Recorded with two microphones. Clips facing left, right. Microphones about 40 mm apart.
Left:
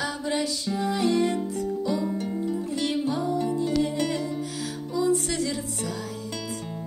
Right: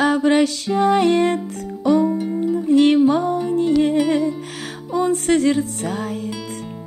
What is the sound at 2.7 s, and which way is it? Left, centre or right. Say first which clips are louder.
Music: right 17 dB; right.